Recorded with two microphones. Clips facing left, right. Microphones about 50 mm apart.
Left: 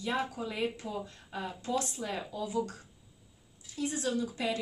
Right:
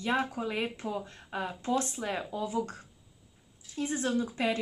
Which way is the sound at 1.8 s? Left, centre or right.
Right.